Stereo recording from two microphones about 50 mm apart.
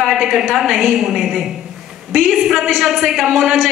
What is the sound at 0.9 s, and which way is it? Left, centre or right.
A woman's voice, centre.